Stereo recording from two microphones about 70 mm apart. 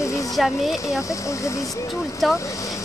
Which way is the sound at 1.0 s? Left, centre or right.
Left.